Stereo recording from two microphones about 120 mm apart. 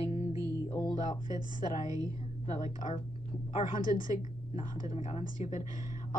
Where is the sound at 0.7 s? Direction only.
35° left (ahead or behind).